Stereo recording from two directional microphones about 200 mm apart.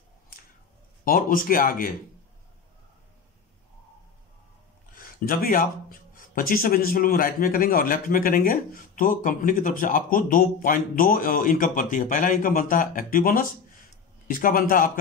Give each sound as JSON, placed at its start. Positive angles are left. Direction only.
{"t": 1.0, "sound": "speech", "side_deg": 45}
{"t": 4.9, "sound": "speech", "side_deg": 45}